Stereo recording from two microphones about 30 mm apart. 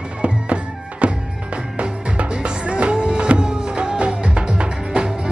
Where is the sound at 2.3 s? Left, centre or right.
Right.